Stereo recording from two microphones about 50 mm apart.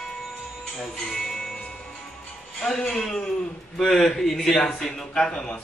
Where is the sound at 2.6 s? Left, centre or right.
Centre.